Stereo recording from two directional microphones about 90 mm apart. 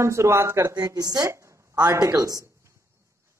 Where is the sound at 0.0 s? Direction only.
30° right (ahead or behind).